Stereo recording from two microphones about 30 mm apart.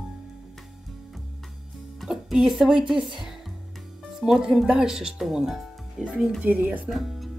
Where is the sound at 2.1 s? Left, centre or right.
Centre.